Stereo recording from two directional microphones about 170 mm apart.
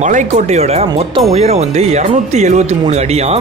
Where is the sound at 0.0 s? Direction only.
45° right (ahead or behind).